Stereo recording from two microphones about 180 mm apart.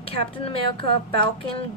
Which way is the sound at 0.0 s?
30° left (ahead or behind).